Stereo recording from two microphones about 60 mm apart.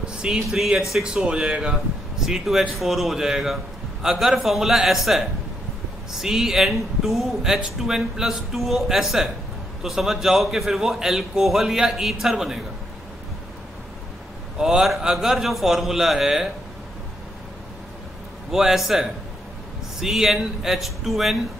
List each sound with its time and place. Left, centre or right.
0.1 s a sound: centre
0.5 s a man's voice: centre
1.0 s a man's voice: centre
14.6 s a man's voice: centre
18.5 s a man's voice: centre